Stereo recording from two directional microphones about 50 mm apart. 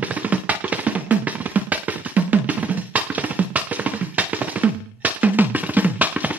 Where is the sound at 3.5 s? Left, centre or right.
Right.